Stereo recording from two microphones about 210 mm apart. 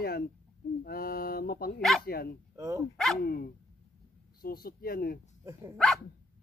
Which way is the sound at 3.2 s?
45° left (ahead or behind).